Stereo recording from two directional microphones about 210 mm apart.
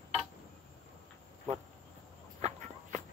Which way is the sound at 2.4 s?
30° right (ahead or behind).